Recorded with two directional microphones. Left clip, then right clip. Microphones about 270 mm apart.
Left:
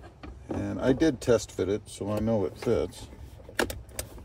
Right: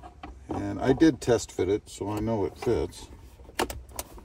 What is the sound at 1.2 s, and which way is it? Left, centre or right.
Speech, right.